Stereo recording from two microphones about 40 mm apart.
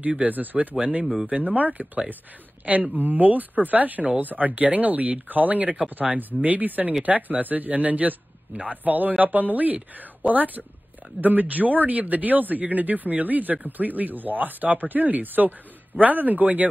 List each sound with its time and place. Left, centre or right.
0.2 s a man's voice: right
2.9 s a man's voice: right